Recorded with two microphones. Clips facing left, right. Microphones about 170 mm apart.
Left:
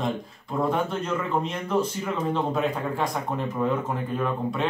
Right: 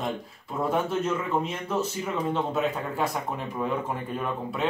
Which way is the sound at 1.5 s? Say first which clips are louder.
Left 3 dB; 5° right (ahead or behind).